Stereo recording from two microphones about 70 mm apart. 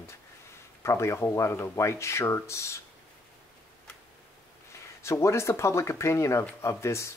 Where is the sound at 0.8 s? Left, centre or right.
Left.